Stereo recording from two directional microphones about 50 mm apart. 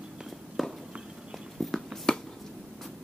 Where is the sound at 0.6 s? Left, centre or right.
Centre.